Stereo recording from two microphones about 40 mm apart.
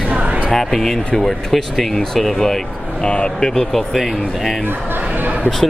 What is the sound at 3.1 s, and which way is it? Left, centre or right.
Speech, left.